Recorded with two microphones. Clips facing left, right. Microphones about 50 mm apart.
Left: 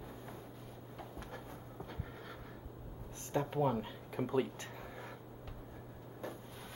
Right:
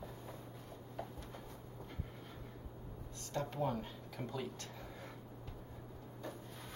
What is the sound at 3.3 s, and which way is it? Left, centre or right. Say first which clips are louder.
Speech: left 5 dB; centre.